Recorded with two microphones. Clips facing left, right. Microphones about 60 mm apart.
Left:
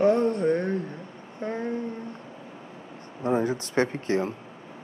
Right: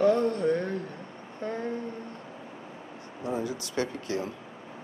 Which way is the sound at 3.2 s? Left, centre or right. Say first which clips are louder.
Left 7 dB; left.